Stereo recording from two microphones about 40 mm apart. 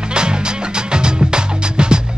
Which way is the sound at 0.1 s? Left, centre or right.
Right.